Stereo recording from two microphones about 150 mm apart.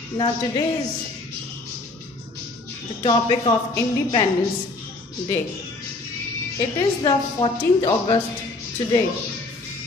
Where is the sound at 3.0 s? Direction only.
30° left (ahead or behind).